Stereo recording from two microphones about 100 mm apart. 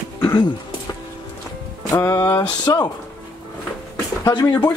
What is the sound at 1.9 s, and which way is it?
Speech, 30° left (ahead or behind).